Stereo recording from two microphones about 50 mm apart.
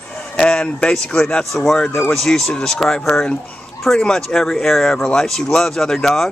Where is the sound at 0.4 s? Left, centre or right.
Centre.